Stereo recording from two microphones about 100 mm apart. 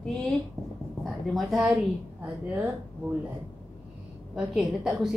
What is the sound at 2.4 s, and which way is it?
Speech, 15° right (ahead or behind).